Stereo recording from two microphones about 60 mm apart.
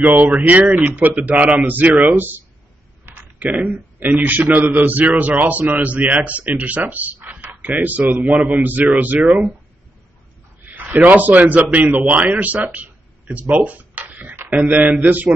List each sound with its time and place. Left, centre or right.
0.0 s speech: right
3.1 s typing: right
3.4 s speech: right
10.6 s a man's voice: right
13.6 s a sound: right
14.6 s speech: right